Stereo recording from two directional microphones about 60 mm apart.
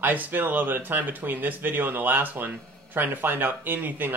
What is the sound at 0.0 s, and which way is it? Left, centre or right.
Speech, right.